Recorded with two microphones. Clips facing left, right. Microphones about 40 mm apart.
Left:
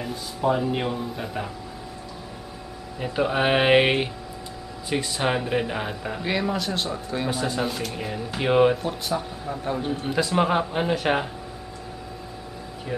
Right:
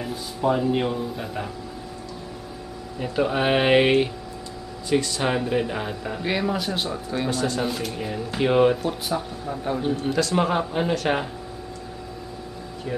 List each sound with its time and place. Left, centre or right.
0.0 s speech: centre
3.0 s speech: centre
7.2 s speech: centre
7.6 s speech: centre
10.0 s speech: centre